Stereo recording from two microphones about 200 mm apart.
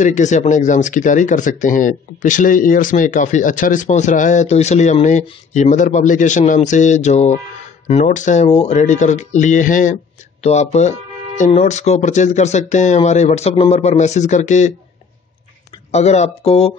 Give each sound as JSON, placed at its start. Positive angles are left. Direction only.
{"t": 0.0, "sound": "speech", "side_deg": 35}
{"t": 15.9, "sound": "speech", "side_deg": 35}